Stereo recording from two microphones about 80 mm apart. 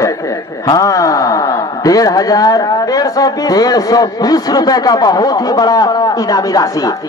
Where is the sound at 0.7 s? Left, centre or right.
Left.